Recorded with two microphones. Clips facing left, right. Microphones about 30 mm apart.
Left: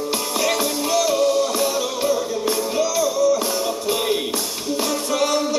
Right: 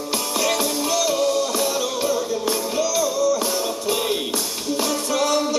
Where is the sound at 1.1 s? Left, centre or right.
Centre.